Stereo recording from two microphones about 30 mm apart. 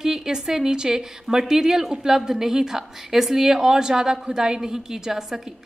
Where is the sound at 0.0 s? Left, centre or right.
Centre.